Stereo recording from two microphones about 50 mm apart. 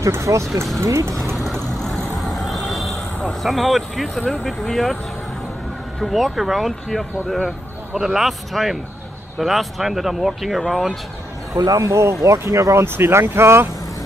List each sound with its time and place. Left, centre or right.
0.1 s speech: right
1.8 s vehicle: centre
3.3 s speech: centre
5.9 s speech: centre
11.8 s speech: right
12.8 s speech: right